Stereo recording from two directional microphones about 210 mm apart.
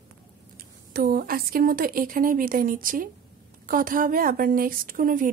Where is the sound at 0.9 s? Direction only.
45° right (ahead or behind).